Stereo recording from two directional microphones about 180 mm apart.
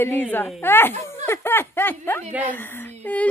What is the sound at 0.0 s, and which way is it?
A woman's voice, 10° left (ahead or behind).